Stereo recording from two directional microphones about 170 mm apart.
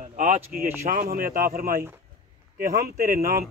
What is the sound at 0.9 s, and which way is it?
Speech, 55° right (ahead or behind).